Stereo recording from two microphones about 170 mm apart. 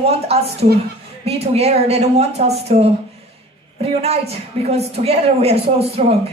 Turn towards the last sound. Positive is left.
turn(degrees=-35)  # may be behind; listen again after turning